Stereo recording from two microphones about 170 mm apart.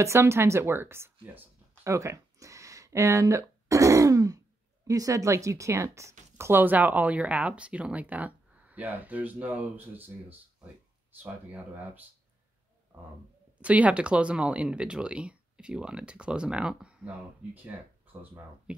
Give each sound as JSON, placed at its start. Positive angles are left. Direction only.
{"t": 0.0, "sound": "speech", "side_deg": -15}
{"t": 11.2, "sound": "speech", "side_deg": -10}
{"t": 13.6, "sound": "speech", "side_deg": -10}
{"t": 18.2, "sound": "speech", "side_deg": -10}